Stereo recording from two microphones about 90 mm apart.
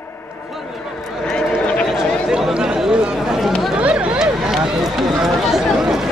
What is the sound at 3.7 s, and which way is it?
Run, 10° right (ahead or behind).